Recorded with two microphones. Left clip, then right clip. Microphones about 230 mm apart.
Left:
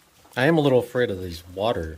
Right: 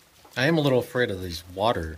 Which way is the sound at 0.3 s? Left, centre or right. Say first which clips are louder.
Left 3 dB; centre.